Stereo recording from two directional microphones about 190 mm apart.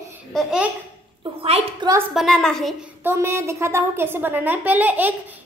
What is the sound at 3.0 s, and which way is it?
A woman's voice, 15° right (ahead or behind).